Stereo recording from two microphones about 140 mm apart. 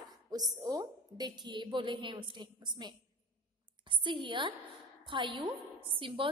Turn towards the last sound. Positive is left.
turn(degrees=-40)  # may be behind; listen again after turning